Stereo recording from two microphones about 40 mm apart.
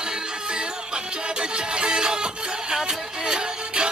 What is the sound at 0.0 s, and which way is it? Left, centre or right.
Music, centre.